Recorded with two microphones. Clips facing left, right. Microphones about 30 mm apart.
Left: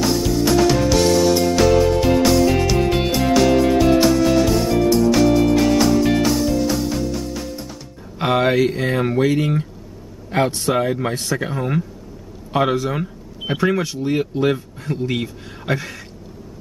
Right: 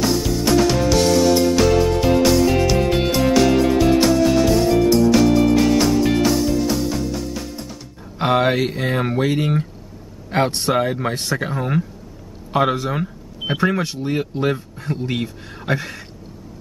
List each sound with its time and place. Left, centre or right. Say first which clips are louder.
0.0 s music: left 1 dB; centre
8.2 s speech: left 1 dB; centre
10.3 s speech: even; right
10.7 s speech: even; centre
12.9 s speech: right 1 dB; centre